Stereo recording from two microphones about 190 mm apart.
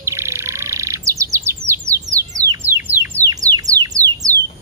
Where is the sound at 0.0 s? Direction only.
15° right (ahead or behind).